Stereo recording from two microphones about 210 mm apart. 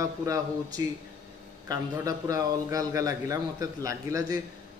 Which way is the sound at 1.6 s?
15° right (ahead or behind).